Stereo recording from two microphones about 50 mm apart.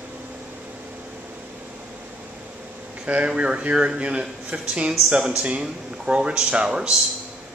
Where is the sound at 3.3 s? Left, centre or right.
Right.